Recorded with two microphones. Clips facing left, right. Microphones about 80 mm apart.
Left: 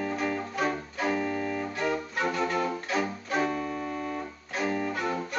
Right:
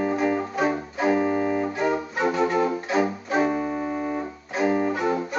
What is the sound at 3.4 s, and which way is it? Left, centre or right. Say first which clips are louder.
Keyboard: right 7 dB; right.